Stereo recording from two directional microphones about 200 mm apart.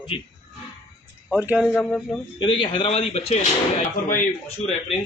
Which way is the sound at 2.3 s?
25° left (ahead or behind).